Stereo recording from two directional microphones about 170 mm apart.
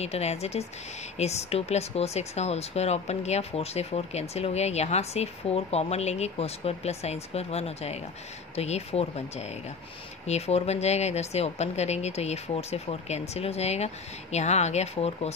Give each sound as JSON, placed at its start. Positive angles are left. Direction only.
{"t": 0.0, "sound": "speech", "side_deg": 40}